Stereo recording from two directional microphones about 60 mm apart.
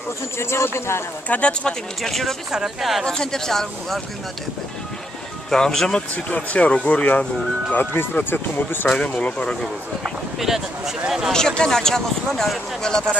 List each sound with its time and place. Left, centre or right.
0.4 s speech: left
1.3 s speech: centre
2.0 s speech: centre
3.1 s speech: centre
5.5 s speech: centre
6.1 s speech: left
8.8 s speech: centre
10.0 s speech: centre
11.3 s speech: centre